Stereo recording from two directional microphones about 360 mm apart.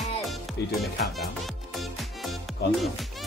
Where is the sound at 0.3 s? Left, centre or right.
Centre.